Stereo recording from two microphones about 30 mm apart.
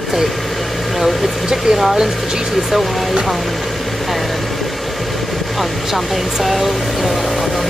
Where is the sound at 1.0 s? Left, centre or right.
Centre.